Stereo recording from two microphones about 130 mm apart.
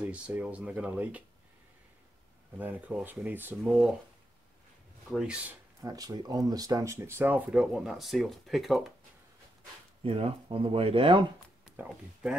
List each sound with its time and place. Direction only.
0.0 s speech: 10° right (ahead or behind)
2.5 s speech: 10° right (ahead or behind)
5.1 s speech: 5° right (ahead or behind)
5.8 s speech: 30° right (ahead or behind)
7.5 s speech: centre (ahead or behind)
10.0 s speech: 45° right (ahead or behind)
11.6 s speech: 10° right (ahead or behind)